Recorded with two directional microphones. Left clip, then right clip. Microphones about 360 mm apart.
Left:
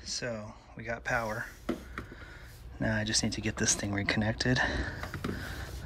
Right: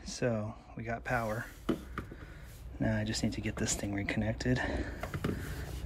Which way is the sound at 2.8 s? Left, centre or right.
Centre.